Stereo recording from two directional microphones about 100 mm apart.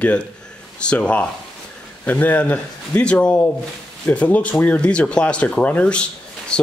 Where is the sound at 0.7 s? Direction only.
10° left (ahead or behind).